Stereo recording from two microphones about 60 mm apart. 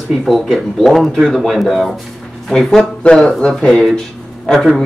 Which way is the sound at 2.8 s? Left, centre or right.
Centre.